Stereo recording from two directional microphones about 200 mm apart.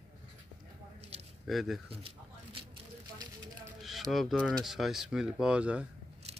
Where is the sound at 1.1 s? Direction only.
30° right (ahead or behind).